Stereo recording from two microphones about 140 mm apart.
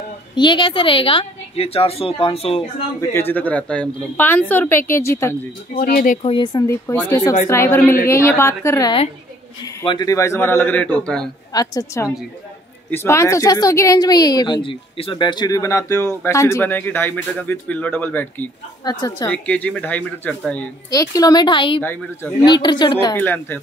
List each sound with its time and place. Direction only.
0.4 s a woman's voice: 35° left (ahead or behind)
3.0 s a woman's voice: 15° left (ahead or behind)
5.8 s speech: 90° left
6.2 s a woman's voice: 35° left (ahead or behind); by 11.2 s 10° left (ahead or behind)
11.5 s a woman's voice: 25° left (ahead or behind)
18.9 s speech: 30° left (ahead or behind)
19.2 s a woman's voice: 10° left (ahead or behind)
20.9 s a woman's voice: 25° left (ahead or behind)
23.1 s a woman's voice: 15° left (ahead or behind)